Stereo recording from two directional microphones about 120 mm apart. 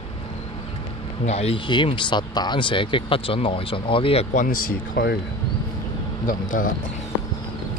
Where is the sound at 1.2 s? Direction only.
60° left (ahead or behind); by 4.5 s 75° left (ahead or behind).